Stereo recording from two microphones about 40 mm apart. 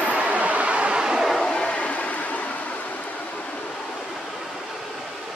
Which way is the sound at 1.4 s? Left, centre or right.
Centre.